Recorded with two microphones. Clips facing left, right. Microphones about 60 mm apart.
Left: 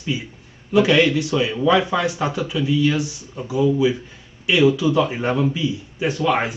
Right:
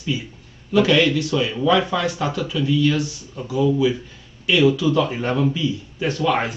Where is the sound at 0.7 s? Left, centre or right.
Left.